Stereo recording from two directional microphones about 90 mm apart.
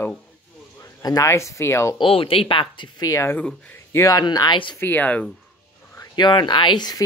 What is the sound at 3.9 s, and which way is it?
Speech, 40° left (ahead or behind).